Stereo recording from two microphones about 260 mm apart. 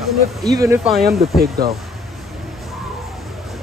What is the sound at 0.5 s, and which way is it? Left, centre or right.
Speech, centre.